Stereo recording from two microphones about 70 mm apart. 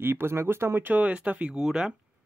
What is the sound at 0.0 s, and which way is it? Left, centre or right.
Speech, right.